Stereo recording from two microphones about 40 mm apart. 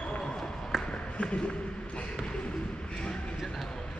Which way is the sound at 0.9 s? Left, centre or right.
Left.